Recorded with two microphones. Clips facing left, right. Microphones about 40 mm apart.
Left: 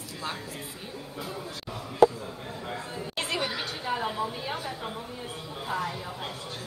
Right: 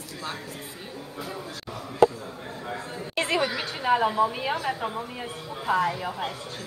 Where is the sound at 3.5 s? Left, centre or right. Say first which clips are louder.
Right 7 dB; right.